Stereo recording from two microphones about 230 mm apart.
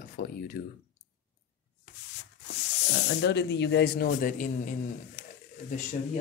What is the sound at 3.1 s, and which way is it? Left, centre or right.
Speech, left.